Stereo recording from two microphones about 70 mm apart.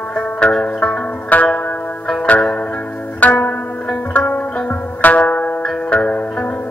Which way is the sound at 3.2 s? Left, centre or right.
Left.